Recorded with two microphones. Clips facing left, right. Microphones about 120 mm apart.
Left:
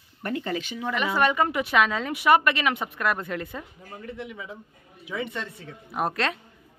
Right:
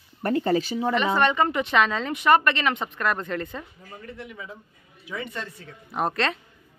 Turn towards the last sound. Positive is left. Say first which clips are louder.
# right 1 dB
turn(degrees=5)  # may be behind; listen again after turning